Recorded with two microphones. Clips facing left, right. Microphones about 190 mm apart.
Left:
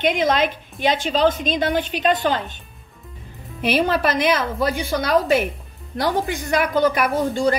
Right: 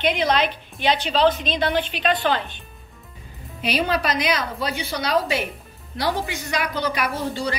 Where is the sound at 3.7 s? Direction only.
50° left (ahead or behind).